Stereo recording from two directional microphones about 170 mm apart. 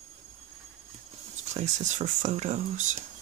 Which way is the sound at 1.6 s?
45° right (ahead or behind).